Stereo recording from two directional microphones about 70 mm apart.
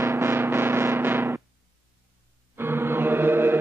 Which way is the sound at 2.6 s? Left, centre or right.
Right.